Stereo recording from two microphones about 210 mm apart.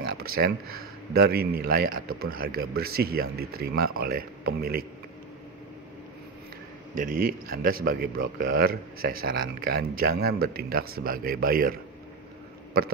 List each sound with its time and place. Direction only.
0.0 s a sound: 45° right (ahead or behind)
1.1 s a man's voice: 45° right (ahead or behind)
7.0 s a man's voice: 40° right (ahead or behind)